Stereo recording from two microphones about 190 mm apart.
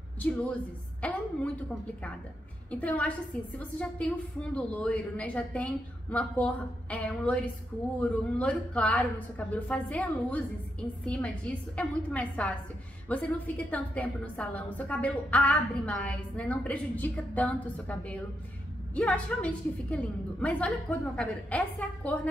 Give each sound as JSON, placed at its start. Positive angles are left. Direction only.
{"t": 0.2, "sound": "a woman's voice", "side_deg": 5}
{"t": 2.7, "sound": "a woman's voice", "side_deg": 5}